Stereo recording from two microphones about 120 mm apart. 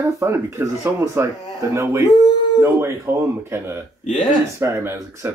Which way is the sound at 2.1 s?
35° left (ahead or behind).